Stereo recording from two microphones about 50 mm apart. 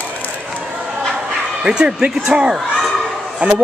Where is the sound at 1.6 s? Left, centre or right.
Centre.